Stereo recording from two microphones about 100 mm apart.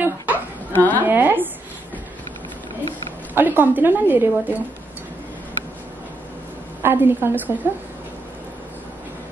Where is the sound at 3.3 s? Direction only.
20° right (ahead or behind).